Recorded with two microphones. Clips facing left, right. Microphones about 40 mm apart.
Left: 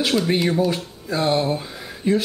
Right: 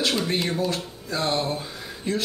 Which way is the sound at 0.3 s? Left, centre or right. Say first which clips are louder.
Left 5 dB; centre.